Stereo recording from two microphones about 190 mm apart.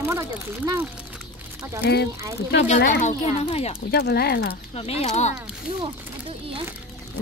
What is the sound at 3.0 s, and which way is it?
Speech, 35° left (ahead or behind).